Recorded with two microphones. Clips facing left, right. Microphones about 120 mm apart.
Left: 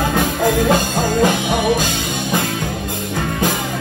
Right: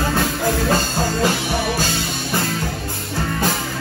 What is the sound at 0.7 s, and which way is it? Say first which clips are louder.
Music: left 4 dB; 15° left (ahead or behind).